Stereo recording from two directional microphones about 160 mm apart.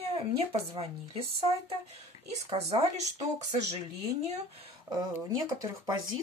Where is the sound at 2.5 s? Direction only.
40° right (ahead or behind).